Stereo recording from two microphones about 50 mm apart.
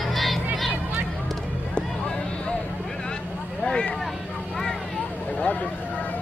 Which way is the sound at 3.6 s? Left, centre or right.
Centre.